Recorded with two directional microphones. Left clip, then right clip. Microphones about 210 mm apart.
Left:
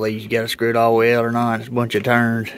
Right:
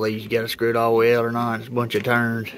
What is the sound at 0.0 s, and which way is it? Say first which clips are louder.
Speech: left 2 dB; 20° left (ahead or behind).